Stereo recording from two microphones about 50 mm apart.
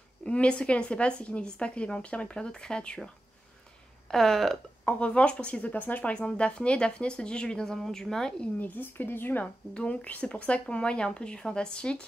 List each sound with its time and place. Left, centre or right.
0.2 s a woman's voice: left
4.1 s a sound: centre
4.8 s a woman's voice: left
6.1 s a woman's voice: left
8.5 s speech: left
9.8 s a woman's voice: left